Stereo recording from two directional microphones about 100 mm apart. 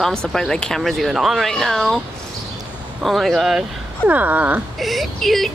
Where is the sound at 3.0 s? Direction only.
Centre (ahead or behind).